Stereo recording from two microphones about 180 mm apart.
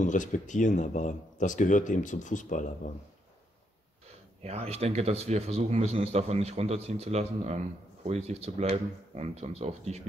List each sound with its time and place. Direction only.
0.0 s speech: 45° left (ahead or behind)
4.4 s speech: 35° right (ahead or behind)